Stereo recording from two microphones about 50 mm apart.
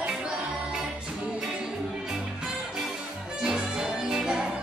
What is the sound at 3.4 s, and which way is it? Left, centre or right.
Music, centre.